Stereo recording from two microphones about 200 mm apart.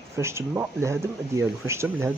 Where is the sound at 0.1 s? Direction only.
15° right (ahead or behind).